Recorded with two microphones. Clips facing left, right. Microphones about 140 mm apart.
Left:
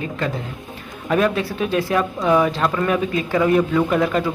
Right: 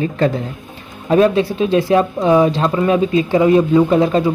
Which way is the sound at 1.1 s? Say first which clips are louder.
Right 6 dB; 30° right (ahead or behind).